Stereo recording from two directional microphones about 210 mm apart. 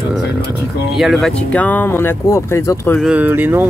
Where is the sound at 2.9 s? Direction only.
5° right (ahead or behind).